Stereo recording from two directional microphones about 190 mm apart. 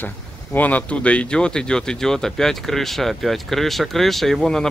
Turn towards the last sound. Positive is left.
turn(degrees=5)  # may be behind; listen again after turning